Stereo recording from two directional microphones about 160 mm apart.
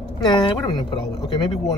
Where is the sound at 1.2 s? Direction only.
30° left (ahead or behind).